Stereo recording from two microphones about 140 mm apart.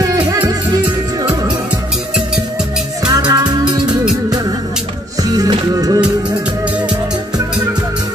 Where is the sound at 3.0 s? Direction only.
30° right (ahead or behind).